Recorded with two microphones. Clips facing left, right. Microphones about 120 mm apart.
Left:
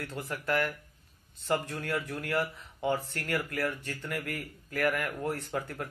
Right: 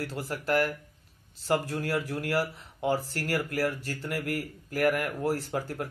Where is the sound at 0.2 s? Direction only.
35° right (ahead or behind).